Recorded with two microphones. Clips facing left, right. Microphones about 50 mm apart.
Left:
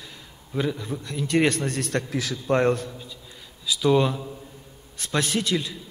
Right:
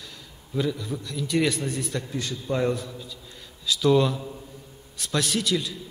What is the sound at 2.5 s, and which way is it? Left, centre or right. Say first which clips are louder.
Speech: left 4 dB; left.